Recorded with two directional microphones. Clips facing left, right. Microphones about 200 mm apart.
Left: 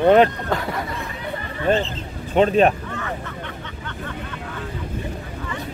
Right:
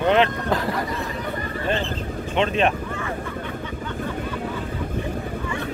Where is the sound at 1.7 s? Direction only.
45° left (ahead or behind).